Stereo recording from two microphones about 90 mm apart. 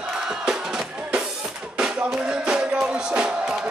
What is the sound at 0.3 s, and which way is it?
Music, 10° right (ahead or behind).